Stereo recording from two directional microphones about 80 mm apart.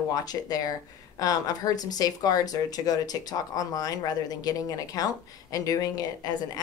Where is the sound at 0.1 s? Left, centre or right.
Left.